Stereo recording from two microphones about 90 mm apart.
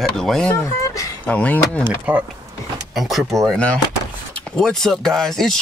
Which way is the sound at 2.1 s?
15° right (ahead or behind).